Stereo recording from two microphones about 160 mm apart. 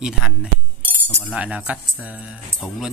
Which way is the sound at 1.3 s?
10° right (ahead or behind).